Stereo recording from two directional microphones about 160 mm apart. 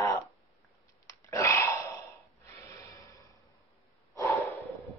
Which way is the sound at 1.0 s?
20° left (ahead or behind).